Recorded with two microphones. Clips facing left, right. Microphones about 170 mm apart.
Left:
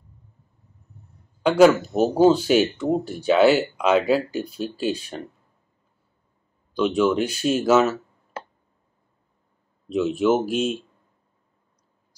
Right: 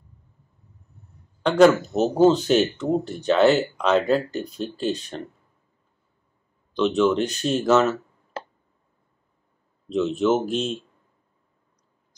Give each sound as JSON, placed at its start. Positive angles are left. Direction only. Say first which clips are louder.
{"t": 1.4, "sound": "speech", "louder": "left 1 dB", "side_deg": 10}
{"t": 6.7, "sound": "speech", "louder": "even", "side_deg": 10}
{"t": 9.8, "sound": "speech", "louder": "left 1 dB", "side_deg": 10}